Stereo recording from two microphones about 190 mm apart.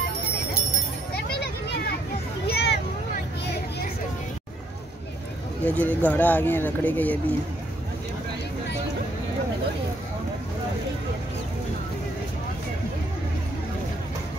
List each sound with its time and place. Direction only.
1.1 s children playing: 60° left (ahead or behind)
2.4 s a sound: 60° left (ahead or behind)
5.7 s speech: 10° left (ahead or behind)